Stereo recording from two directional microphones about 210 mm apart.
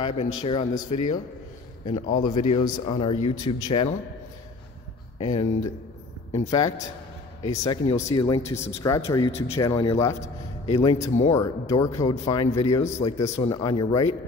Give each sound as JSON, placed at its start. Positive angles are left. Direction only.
{"t": 0.0, "sound": "speech", "side_deg": 25}
{"t": 2.1, "sound": "speech", "side_deg": 20}
{"t": 5.2, "sound": "speech", "side_deg": 30}
{"t": 6.5, "sound": "speech", "side_deg": 15}
{"t": 10.7, "sound": "speech", "side_deg": 25}